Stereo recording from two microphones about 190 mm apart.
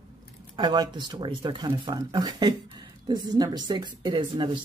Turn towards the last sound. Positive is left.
turn(degrees=-25)  # may be behind; listen again after turning